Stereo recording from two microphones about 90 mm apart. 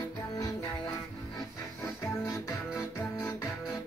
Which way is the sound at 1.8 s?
35° left (ahead or behind).